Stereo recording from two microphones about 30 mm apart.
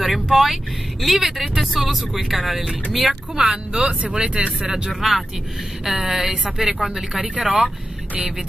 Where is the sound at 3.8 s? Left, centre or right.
Right.